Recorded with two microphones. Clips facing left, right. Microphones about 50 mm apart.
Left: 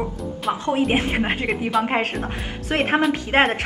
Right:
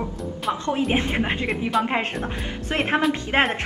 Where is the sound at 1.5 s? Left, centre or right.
Centre.